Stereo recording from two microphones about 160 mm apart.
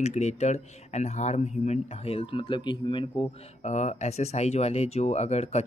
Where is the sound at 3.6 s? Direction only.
45° left (ahead or behind).